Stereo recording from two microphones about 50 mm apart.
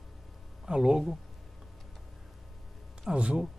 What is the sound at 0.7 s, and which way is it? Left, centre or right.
Speech, centre.